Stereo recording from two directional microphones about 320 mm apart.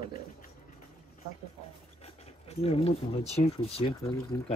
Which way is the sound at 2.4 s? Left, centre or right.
Centre.